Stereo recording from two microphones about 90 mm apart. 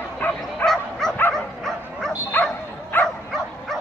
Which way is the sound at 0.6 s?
5° left (ahead or behind).